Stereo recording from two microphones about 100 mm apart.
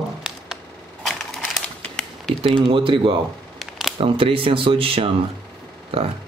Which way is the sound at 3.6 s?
Centre (ahead or behind).